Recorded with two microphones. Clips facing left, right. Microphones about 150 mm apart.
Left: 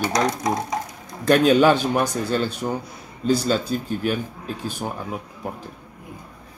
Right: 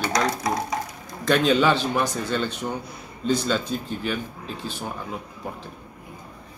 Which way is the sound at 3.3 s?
40° left (ahead or behind).